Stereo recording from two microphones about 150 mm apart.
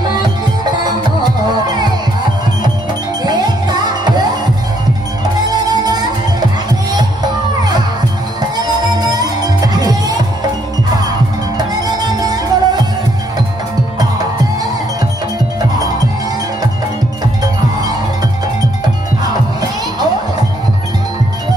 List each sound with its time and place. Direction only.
0.1 s music: 30° right (ahead or behind)
3.3 s music: 25° right (ahead or behind)
5.4 s music: 25° right (ahead or behind)
8.4 s music: 25° right (ahead or behind)